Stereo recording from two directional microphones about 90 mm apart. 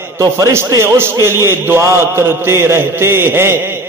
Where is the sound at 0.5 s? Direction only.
30° right (ahead or behind).